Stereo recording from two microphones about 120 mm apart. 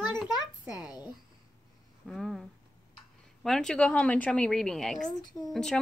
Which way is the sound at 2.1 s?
Centre (ahead or behind).